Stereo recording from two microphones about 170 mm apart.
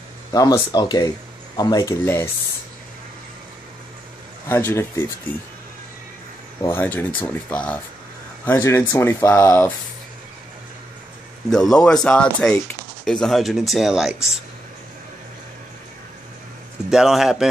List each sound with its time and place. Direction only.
0.3 s speech: 20° left (ahead or behind)
4.5 s speech: 15° left (ahead or behind)
6.6 s speech: 10° left (ahead or behind)
11.5 s speech: 5° left (ahead or behind)
16.9 s speech: centre (ahead or behind)